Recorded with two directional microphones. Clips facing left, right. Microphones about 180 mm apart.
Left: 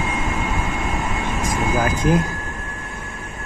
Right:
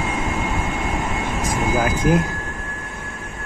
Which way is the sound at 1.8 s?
10° right (ahead or behind).